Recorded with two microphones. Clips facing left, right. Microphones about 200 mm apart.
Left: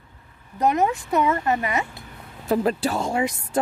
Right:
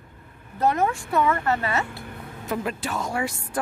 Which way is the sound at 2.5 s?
35° left (ahead or behind).